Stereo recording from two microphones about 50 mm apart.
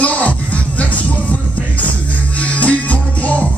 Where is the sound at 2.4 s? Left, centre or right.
Left.